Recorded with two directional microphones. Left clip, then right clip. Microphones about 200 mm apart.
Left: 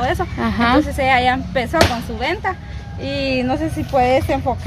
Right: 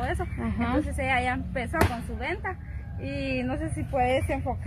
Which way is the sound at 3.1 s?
50° left (ahead or behind).